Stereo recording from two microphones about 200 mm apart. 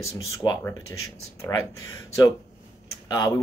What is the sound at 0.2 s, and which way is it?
Speech, 15° left (ahead or behind).